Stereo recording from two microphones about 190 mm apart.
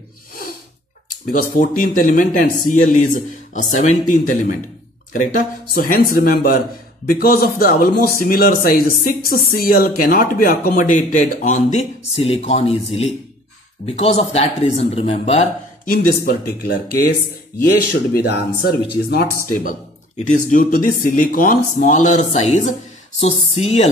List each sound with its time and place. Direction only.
1.3 s speech: 45° left (ahead or behind)
16.3 s speech: 50° left (ahead or behind)
18.1 s speech: 55° left (ahead or behind)
20.2 s speech: 40° left (ahead or behind)